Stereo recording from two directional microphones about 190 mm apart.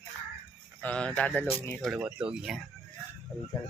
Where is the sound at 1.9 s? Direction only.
5° right (ahead or behind).